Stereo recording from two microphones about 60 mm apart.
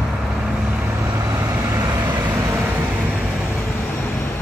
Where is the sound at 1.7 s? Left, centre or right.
Right.